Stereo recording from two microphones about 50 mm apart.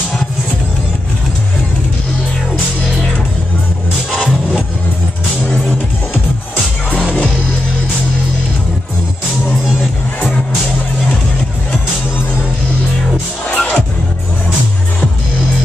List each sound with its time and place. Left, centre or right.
6.9 s music: left
13.5 s music: left